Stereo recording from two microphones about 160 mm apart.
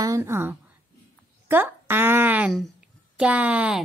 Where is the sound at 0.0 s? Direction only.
20° right (ahead or behind).